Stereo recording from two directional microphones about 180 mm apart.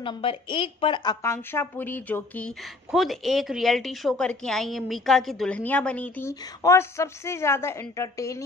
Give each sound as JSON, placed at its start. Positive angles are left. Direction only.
{"t": 0.0, "sound": "a woman's voice", "side_deg": 30}
{"t": 1.2, "sound": "a woman's voice", "side_deg": 15}